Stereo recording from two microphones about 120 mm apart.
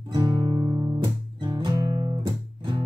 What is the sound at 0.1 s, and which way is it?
Music, 40° right (ahead or behind).